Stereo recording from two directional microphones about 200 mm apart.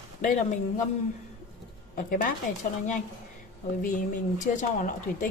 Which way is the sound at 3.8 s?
40° left (ahead or behind).